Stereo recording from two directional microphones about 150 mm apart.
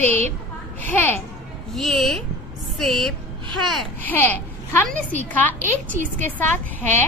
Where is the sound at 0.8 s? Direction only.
10° left (ahead or behind).